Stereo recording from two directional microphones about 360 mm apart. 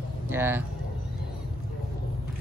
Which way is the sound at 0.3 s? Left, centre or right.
Centre.